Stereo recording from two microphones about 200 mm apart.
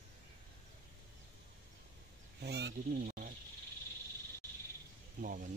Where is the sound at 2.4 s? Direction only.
55° right (ahead or behind).